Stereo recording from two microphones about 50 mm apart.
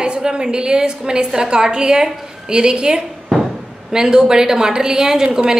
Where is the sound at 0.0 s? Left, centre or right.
Centre.